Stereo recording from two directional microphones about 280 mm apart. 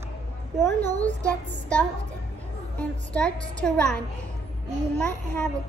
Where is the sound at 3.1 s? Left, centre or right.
Centre.